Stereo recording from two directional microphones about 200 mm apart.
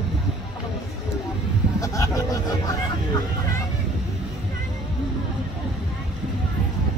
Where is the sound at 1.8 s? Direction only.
15° left (ahead or behind).